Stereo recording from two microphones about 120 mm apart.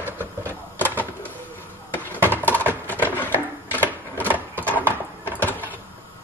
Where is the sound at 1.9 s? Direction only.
15° left (ahead or behind).